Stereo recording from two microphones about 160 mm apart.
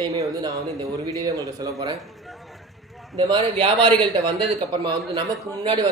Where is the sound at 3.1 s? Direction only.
35° right (ahead or behind).